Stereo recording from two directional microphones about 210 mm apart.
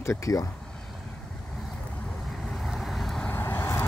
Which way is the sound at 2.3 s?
Centre (ahead or behind).